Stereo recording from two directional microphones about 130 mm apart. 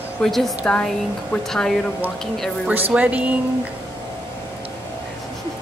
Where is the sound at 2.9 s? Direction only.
10° right (ahead or behind).